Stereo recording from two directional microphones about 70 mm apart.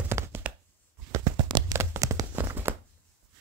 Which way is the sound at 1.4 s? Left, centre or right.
Right.